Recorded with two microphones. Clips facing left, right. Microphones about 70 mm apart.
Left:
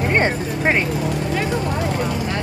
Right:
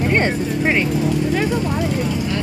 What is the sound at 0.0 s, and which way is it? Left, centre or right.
Speech, left.